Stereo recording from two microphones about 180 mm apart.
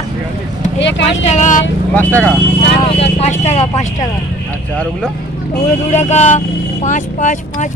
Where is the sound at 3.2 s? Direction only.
40° left (ahead or behind).